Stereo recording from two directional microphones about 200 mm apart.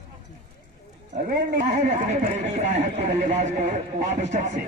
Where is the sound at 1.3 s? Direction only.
35° right (ahead or behind).